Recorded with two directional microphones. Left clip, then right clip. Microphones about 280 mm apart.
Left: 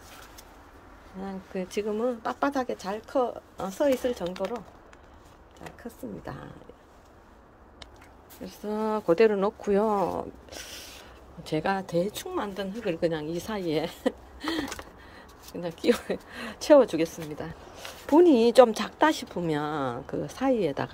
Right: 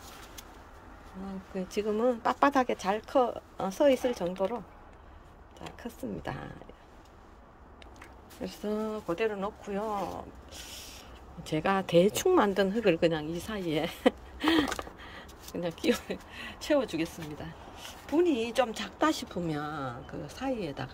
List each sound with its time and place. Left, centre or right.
1.2 s speech: centre
6.2 s speech: centre
8.5 s speech: centre
9.0 s speech: left
9.8 s speech: left
10.5 s a sound: centre
11.5 s speech: centre
12.1 s speech: centre
13.1 s speech: centre
14.4 s gasp: centre
16.3 s speech: centre